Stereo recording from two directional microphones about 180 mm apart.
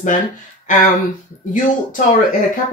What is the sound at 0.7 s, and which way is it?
Speech, 45° left (ahead or behind).